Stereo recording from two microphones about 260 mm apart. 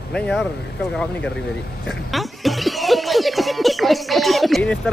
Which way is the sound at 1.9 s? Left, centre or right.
Centre.